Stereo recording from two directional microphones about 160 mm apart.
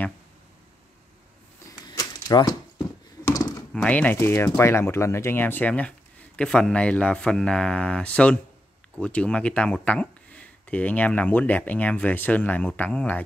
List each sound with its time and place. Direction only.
1.9 s typewriter: 25° left (ahead or behind)
3.3 s computer keyboard: 25° left (ahead or behind)
3.7 s speech: 10° left (ahead or behind)